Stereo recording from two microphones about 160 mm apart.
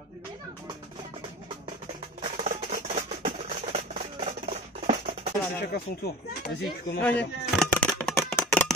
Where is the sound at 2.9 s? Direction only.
40° right (ahead or behind).